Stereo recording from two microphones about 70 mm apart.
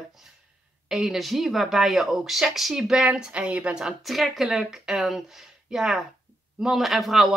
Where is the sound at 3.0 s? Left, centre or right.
Centre.